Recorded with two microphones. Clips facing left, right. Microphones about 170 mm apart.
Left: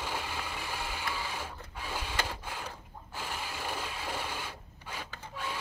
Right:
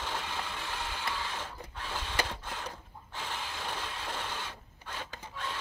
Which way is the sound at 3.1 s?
10° left (ahead or behind).